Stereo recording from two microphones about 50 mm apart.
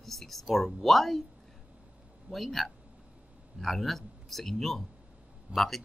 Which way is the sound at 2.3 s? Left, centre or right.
Centre.